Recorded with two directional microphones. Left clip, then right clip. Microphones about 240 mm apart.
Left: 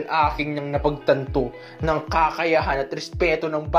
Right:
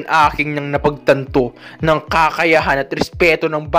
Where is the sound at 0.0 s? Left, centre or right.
Right.